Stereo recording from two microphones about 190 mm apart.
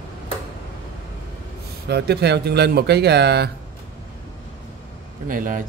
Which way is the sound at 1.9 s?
60° right (ahead or behind).